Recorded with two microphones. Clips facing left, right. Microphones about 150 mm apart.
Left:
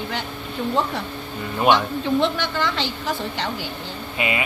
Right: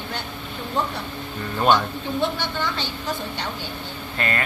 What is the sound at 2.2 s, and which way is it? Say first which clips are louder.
A woman's voice: left 3 dB; 90° left.